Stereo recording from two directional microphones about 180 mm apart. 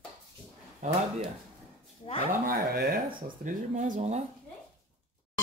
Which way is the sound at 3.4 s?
45° right (ahead or behind).